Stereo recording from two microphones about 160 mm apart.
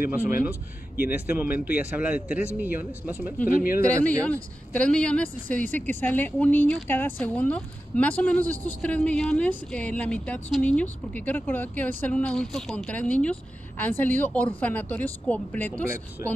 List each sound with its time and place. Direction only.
0.1 s speech: 10° right (ahead or behind)
3.4 s speech: 65° left (ahead or behind)
4.0 s speech: 10° left (ahead or behind)